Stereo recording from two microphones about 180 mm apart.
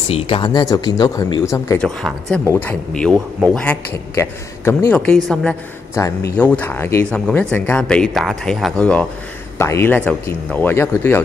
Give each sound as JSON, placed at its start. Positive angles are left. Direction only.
{"t": 0.1, "sound": "speech", "side_deg": 25}
{"t": 1.8, "sound": "a man's voice", "side_deg": 5}
{"t": 6.0, "sound": "a man's voice", "side_deg": 20}